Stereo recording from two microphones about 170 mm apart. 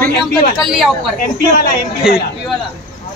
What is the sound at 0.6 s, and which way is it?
Speech, centre (ahead or behind).